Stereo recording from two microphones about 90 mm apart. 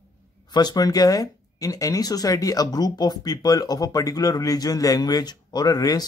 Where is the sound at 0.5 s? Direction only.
50° left (ahead or behind).